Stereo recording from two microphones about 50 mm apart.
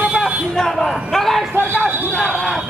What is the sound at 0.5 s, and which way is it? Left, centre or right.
Speech, centre.